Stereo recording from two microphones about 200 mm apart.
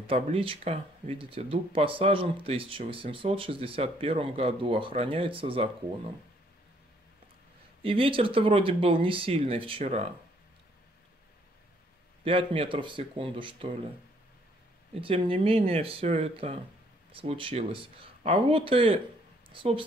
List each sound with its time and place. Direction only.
0.0 s speech: 30° right (ahead or behind)
7.8 s speech: 25° right (ahead or behind)
12.3 s speech: 25° right (ahead or behind)
15.0 s a woman's voice: 25° right (ahead or behind)